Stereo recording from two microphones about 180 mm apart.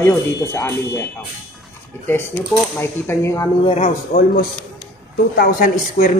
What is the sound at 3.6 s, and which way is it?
Speech, 35° left (ahead or behind).